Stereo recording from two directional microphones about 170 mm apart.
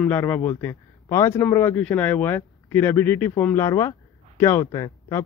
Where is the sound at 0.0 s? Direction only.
10° left (ahead or behind).